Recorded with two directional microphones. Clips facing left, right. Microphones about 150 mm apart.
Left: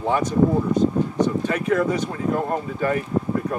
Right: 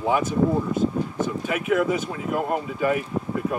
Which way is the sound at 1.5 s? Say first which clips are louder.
Left 1 dB; 5° right (ahead or behind).